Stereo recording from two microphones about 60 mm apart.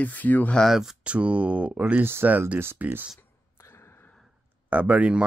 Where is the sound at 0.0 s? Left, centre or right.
Left.